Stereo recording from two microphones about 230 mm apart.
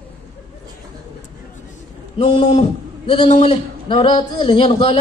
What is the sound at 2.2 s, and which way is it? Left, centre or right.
A man's voice, left.